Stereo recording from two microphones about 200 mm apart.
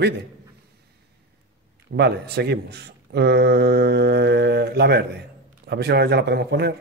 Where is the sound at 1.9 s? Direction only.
55° right (ahead or behind).